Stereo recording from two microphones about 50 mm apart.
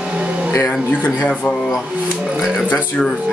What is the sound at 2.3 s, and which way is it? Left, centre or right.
Music, centre.